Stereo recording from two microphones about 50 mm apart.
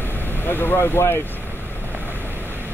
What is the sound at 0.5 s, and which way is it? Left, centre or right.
Speech, left.